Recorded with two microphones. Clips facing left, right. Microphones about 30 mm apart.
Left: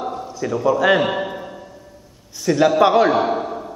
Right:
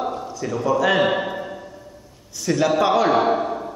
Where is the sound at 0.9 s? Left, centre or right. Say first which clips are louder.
Even; centre.